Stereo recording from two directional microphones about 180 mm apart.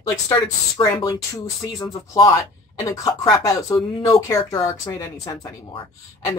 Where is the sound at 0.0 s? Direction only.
20° left (ahead or behind).